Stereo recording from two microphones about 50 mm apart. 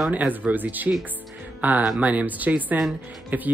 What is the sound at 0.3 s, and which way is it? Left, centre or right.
Speech, right.